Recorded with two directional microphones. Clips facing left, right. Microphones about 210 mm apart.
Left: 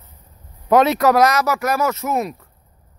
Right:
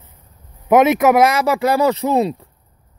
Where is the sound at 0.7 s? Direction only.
20° right (ahead or behind).